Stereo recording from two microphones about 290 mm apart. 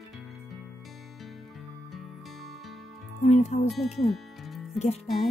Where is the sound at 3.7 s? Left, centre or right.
Centre.